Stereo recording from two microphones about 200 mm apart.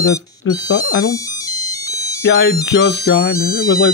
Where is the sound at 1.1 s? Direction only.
15° left (ahead or behind).